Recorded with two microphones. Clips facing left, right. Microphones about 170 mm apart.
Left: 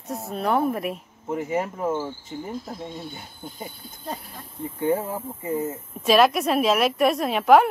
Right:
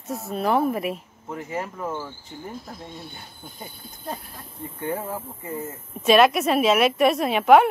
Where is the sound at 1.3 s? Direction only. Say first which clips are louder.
Left 5 dB; 15° left (ahead or behind).